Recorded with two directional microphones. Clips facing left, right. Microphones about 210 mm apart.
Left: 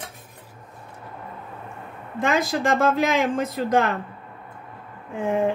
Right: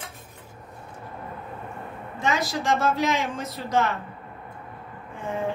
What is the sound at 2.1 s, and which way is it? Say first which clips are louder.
Speech: left 4 dB; 50° left (ahead or behind).